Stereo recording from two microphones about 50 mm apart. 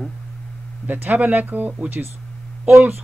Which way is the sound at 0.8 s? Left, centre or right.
Right.